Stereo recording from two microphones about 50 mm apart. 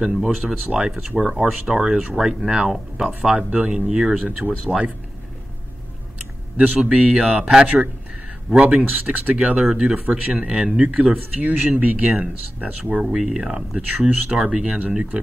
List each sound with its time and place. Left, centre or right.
0.0 s speech: centre
3.4 s speech: right
3.7 s speech: centre
6.5 s speech: right
6.8 s speech: centre
7.6 s speech: right
8.5 s speech: right
9.9 s speech: right
11.1 s speech: right
13.0 s speech: centre